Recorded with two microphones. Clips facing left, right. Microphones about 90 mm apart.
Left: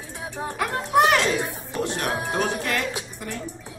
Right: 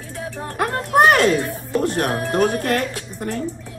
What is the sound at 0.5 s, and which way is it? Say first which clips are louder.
Speech: right 3 dB; 50° right (ahead or behind).